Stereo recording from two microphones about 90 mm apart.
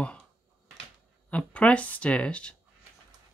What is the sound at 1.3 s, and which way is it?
Speech, 15° left (ahead or behind).